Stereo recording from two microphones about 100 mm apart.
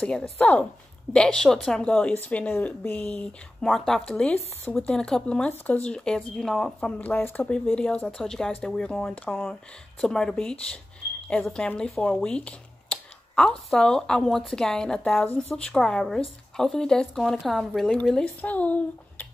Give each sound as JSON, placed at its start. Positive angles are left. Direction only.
{"t": 0.0, "sound": "speech", "side_deg": 10}
{"t": 3.6, "sound": "speech", "side_deg": 5}
{"t": 4.1, "sound": "speech", "side_deg": 15}
{"t": 7.0, "sound": "speech", "side_deg": 20}